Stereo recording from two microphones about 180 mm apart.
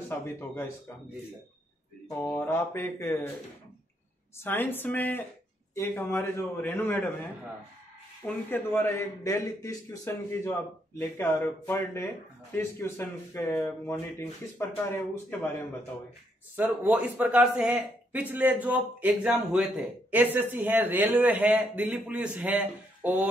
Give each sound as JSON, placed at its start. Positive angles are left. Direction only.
{"t": 0.1, "sound": "a man's voice", "side_deg": 10}
{"t": 2.0, "sound": "a man's voice", "side_deg": 10}
{"t": 4.4, "sound": "a man's voice", "side_deg": 10}
{"t": 8.5, "sound": "a man's voice", "side_deg": 10}
{"t": 16.5, "sound": "speech", "side_deg": -10}